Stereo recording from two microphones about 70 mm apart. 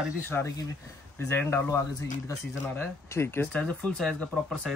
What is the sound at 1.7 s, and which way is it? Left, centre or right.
Speech, left.